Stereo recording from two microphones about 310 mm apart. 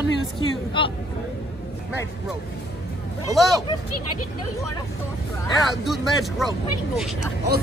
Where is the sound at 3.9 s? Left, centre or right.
Left.